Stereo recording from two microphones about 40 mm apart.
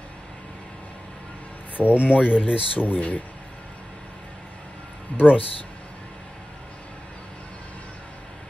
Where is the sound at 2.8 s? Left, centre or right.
Left.